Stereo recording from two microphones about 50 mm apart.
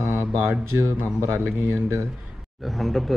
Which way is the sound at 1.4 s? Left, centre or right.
Right.